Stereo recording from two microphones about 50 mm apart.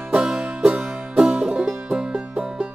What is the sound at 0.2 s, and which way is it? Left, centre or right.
Music, centre.